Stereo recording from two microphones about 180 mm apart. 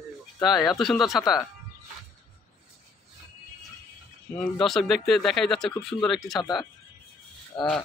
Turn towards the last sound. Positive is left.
turn(degrees=25)  # may be behind; listen again after turning